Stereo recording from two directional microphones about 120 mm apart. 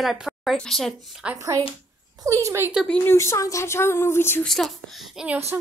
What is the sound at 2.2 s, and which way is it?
Speech, 25° right (ahead or behind).